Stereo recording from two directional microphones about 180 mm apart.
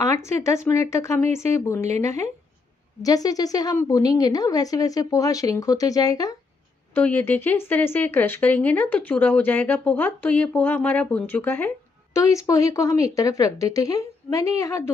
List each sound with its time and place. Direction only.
0.1 s a woman's voice: 15° left (ahead or behind)
6.9 s a woman's voice: 10° left (ahead or behind)